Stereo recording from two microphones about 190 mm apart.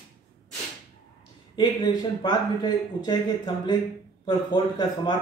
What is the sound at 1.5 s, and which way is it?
A man's voice, 25° left (ahead or behind).